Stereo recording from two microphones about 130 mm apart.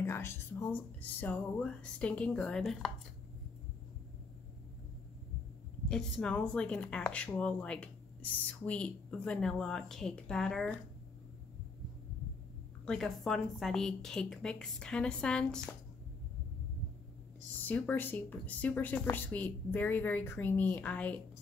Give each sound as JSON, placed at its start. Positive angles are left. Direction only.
{"t": 0.0, "sound": "speech", "side_deg": 20}
{"t": 5.9, "sound": "speech", "side_deg": 5}
{"t": 12.8, "sound": "a woman's voice", "side_deg": 5}
{"t": 17.6, "sound": "speech", "side_deg": 15}